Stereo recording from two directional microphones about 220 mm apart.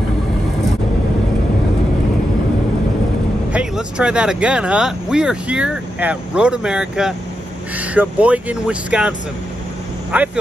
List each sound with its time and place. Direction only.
3.5 s speech: 5° right (ahead or behind)
10.1 s speech: 5° right (ahead or behind)